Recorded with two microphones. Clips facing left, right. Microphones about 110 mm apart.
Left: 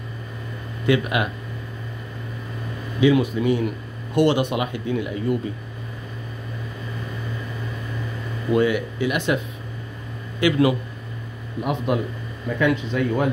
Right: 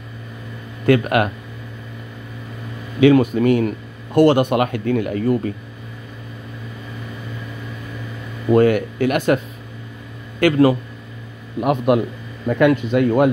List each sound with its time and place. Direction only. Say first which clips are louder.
0.8 s a man's voice: right 5 dB; 50° right (ahead or behind)
3.0 s speech: right 5 dB; 55° right (ahead or behind)
3.6 s a man's voice: right 4 dB; 45° right (ahead or behind)
8.5 s a man's voice: right 6 dB; 50° right (ahead or behind)
10.4 s speech: right 5 dB; 40° right (ahead or behind)
11.6 s speech: right 7 dB; 65° right (ahead or behind)
12.4 s speech: right 6 dB; 55° right (ahead or behind)